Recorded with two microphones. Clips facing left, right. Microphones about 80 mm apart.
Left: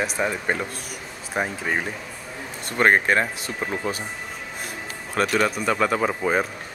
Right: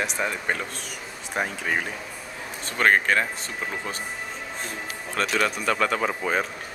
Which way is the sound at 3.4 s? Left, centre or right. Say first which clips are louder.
Left 4 dB; centre.